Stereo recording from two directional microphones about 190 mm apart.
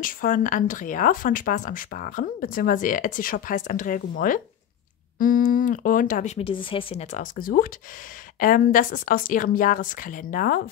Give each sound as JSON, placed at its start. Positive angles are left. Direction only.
{"t": 0.0, "sound": "speech", "side_deg": 45}